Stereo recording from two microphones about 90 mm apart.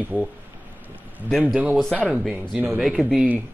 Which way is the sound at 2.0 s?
5° right (ahead or behind).